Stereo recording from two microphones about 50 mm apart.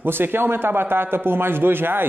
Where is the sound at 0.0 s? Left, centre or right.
Right.